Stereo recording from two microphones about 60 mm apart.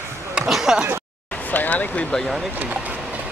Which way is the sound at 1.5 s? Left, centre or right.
Left.